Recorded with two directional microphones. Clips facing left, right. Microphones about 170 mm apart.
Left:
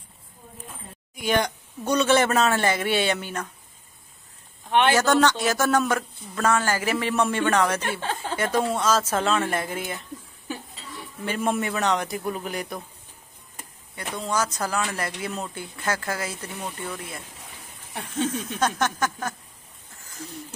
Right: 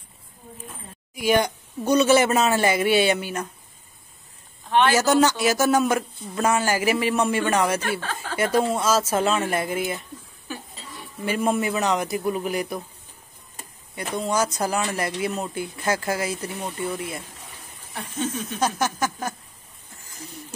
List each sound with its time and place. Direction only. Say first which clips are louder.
1.1 s speech: right 3 dB; 10° right (ahead or behind)
4.9 s speech: right 1 dB; 5° right (ahead or behind)
8.0 s a woman's voice: left 2 dB; 20° left (ahead or behind)
8.4 s speech: right 3 dB; 10° right (ahead or behind)
11.2 s speech: right 3 dB; 5° right (ahead or behind)
13.9 s speech: right 3 dB; 15° right (ahead or behind)
18.6 s speech: right 1 dB; 5° right (ahead or behind)